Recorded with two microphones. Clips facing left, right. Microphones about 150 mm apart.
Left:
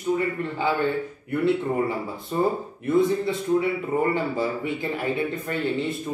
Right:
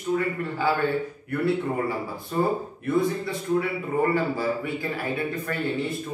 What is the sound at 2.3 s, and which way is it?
A man's voice, 20° left (ahead or behind).